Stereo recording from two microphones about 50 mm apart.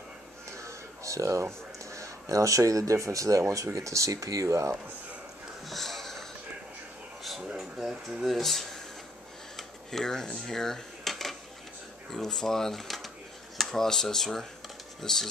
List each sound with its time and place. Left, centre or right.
0.6 s speech: right
5.7 s a sound: centre
8.2 s speech: centre
9.6 s dishes: centre
12.1 s speech: centre